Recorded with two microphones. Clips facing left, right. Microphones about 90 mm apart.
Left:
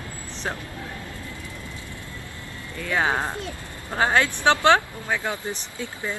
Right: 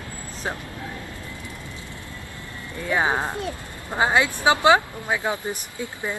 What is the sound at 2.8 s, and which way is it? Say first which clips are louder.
Speech: right 1 dB; 20° right (ahead or behind).